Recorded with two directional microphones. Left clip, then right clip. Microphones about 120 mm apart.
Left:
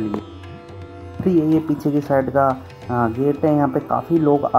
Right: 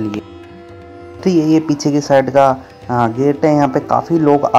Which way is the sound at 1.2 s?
5° right (ahead or behind).